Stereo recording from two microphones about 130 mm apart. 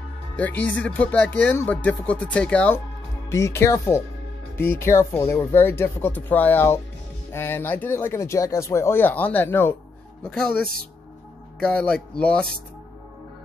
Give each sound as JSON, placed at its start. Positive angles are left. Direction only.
{"t": 0.4, "sound": "speech", "side_deg": 10}
{"t": 3.3, "sound": "speech", "side_deg": 20}
{"t": 10.2, "sound": "speech", "side_deg": 5}